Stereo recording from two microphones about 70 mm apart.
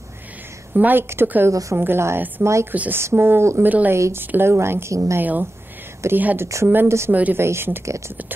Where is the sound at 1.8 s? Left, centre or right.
Right.